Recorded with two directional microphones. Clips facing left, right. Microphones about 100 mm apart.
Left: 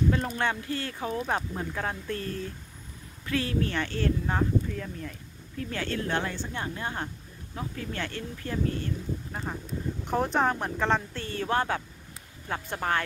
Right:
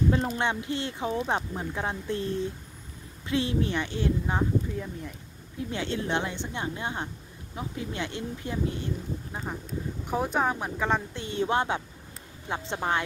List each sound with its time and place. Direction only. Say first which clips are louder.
0.1 s a woman's voice: right 1 dB; 25° right (ahead or behind)
10.0 s speech: left 1 dB; 5° right (ahead or behind)